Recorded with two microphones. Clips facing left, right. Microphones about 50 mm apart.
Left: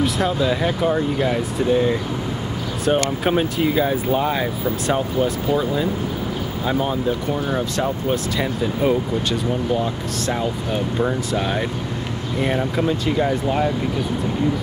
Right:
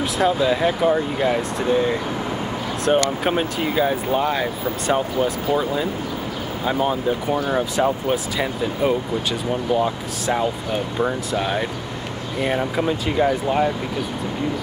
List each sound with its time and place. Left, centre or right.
0.0 s speech: centre
11.0 s speech: centre